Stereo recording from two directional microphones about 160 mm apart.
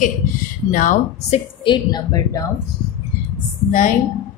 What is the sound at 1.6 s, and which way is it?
Speech, 25° left (ahead or behind).